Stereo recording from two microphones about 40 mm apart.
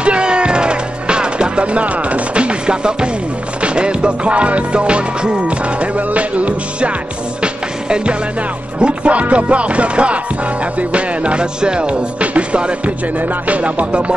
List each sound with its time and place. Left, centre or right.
0.0 s music: right
7.4 s speech: right
13.2 s music: right
13.6 s speech: right